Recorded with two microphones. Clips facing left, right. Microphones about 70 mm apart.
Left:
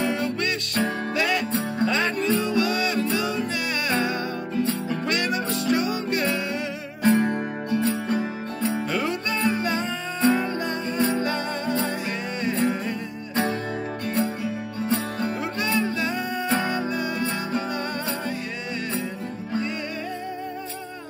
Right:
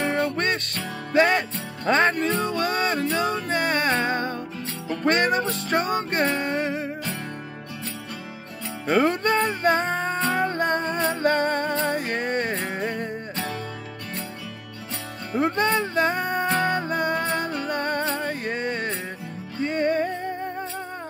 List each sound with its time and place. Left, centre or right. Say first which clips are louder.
0.0 s music: right 1 dB; right
7.2 s music: left 11 dB; left
8.8 s music: right 5 dB; right
15.3 s music: right 7 dB; right